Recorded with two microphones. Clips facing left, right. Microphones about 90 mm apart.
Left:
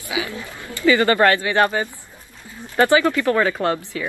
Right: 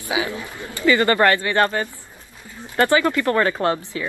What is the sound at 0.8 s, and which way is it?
Speech, 20° left (ahead or behind).